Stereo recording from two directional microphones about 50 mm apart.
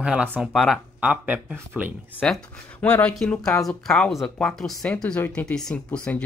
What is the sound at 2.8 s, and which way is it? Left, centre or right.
Speech, left.